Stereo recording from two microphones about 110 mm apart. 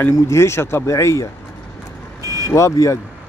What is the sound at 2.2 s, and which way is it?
Vehicle, 30° right (ahead or behind).